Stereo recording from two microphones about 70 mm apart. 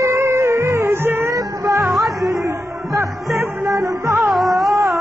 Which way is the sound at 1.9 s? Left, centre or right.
Centre.